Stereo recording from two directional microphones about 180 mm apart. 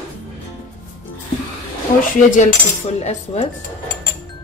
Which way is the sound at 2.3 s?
40° left (ahead or behind).